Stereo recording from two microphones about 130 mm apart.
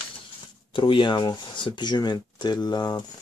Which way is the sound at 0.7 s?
40° left (ahead or behind).